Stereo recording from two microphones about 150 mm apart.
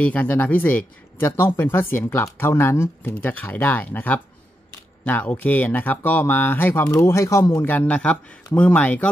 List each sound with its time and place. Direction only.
0.0 s speech: 10° left (ahead or behind)